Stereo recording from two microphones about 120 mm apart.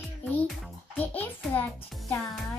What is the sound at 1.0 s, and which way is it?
Speech, 15° left (ahead or behind).